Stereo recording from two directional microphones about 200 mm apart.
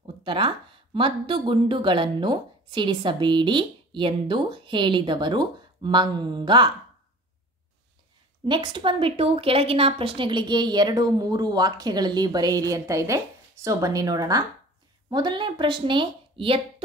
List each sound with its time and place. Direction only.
0.0 s a sound: 25° right (ahead or behind)
0.9 s a woman's voice: 25° right (ahead or behind)
8.5 s a woman's voice: 25° right (ahead or behind)